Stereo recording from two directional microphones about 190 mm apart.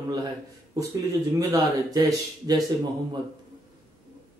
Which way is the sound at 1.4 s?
20° right (ahead or behind).